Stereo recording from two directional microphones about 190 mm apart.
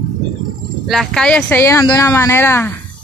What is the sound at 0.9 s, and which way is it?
Speech, centre (ahead or behind).